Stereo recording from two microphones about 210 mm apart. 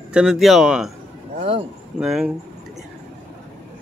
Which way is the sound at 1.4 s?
30° right (ahead or behind).